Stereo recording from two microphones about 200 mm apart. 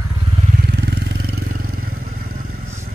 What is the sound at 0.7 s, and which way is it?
Vehicle, 55° right (ahead or behind).